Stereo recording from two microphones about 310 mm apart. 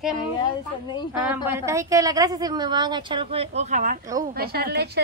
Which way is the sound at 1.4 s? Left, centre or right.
Centre.